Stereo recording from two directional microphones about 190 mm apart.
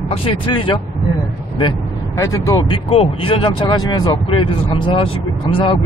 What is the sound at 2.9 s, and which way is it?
Speech, 30° left (ahead or behind).